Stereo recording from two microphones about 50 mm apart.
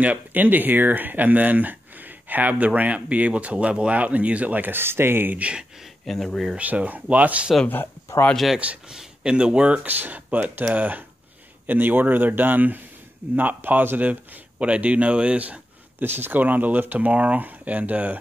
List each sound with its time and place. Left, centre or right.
0.0 s speech: right
5.4 s speech: right
6.0 s speech: centre
6.6 s speech: right
8.8 s speech: centre
9.8 s speech: right
14.6 s speech: right
16.0 s speech: right